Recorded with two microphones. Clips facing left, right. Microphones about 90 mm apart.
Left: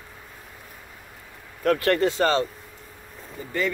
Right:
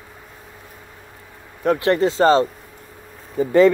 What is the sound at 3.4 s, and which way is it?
Speech, 90° right.